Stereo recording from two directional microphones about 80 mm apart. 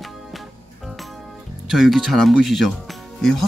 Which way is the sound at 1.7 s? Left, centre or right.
Centre.